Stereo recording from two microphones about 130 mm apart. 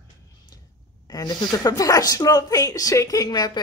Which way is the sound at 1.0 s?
30° left (ahead or behind).